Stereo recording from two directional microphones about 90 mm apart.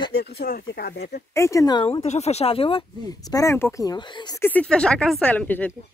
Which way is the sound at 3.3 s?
40° left (ahead or behind).